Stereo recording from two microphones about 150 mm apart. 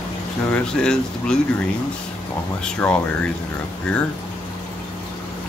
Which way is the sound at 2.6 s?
5° left (ahead or behind).